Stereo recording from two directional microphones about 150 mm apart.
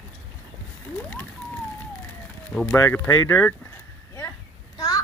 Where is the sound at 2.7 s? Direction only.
15° left (ahead or behind).